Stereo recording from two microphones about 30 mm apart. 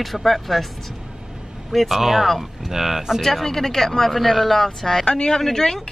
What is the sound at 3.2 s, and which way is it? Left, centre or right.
Speech, centre.